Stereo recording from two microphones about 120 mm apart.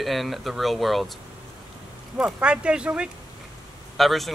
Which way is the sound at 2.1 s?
10° right (ahead or behind).